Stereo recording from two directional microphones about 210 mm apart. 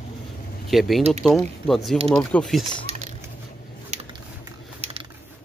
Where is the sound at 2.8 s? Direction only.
35° right (ahead or behind).